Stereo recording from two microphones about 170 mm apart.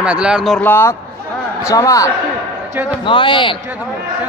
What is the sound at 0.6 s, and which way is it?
A man's voice, 10° left (ahead or behind).